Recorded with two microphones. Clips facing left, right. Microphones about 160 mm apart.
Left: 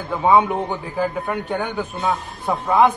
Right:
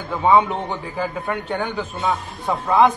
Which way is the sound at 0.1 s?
10° left (ahead or behind).